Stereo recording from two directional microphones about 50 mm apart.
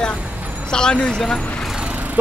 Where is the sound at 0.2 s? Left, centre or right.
Right.